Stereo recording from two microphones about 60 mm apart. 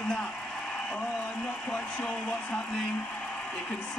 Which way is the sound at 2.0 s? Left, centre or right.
Left.